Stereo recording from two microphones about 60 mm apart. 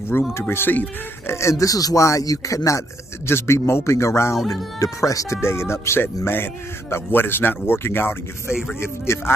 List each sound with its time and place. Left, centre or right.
0.3 s a man's voice: left
1.3 s speech: left
3.3 s a man's voice: left
4.7 s speech: left
5.4 s a man's voice: left